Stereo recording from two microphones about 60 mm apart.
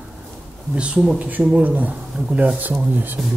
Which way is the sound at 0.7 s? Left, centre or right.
Centre.